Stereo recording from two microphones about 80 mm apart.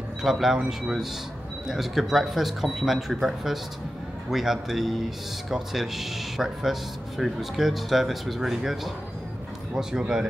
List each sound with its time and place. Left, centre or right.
0.2 s speech: centre